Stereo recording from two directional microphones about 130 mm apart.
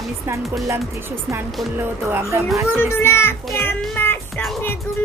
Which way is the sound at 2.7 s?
20° left (ahead or behind).